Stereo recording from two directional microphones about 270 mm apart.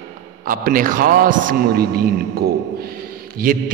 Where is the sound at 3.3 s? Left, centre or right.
Right.